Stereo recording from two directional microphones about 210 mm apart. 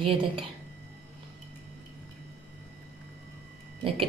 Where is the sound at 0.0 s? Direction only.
25° right (ahead or behind).